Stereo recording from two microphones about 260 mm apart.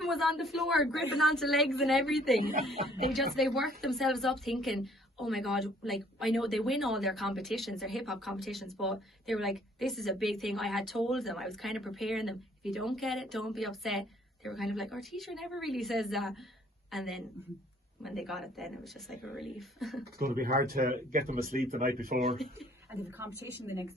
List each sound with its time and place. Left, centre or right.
0.0 s a woman's voice: centre
20.2 s speech: right
23.1 s speech: centre